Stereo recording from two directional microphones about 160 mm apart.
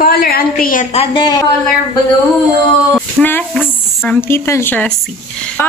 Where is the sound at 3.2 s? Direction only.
10° left (ahead or behind).